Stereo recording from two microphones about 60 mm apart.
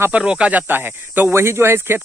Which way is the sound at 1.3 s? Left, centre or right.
Right.